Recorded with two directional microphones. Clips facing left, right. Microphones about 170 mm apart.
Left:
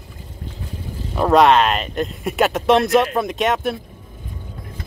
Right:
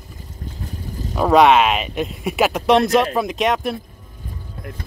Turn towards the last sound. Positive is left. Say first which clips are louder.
# even
turn(degrees=0)  # may be behind; listen again after turning